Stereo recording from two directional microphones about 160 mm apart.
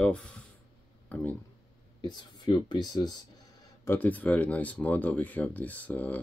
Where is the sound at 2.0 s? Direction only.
25° left (ahead or behind).